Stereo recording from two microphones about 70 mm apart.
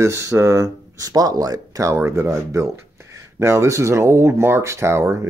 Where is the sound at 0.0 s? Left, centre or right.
Right.